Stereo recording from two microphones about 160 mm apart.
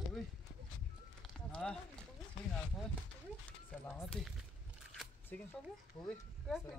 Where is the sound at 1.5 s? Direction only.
5° left (ahead or behind).